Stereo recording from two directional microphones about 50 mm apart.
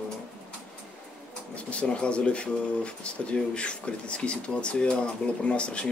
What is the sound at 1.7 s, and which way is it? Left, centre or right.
Speech, left.